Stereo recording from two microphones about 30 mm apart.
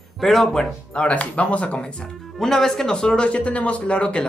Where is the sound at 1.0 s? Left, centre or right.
Left.